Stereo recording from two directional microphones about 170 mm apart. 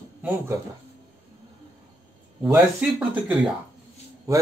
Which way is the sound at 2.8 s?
5° right (ahead or behind).